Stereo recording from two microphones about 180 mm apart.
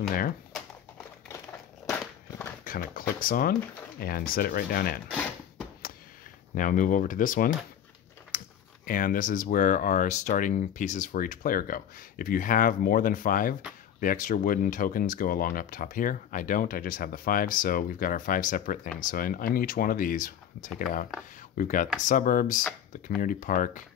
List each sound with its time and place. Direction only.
1.9 s walk: 10° left (ahead or behind)
2.6 s speech: 50° left (ahead or behind)
6.5 s speech: 45° left (ahead or behind)
8.3 s typing: 50° left (ahead or behind)
8.8 s speech: 50° left (ahead or behind)